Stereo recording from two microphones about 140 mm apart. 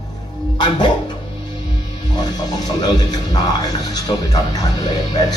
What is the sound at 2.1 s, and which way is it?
Speech, 30° left (ahead or behind).